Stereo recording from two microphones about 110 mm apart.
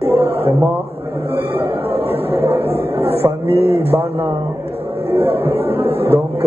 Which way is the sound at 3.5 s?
60° left (ahead or behind).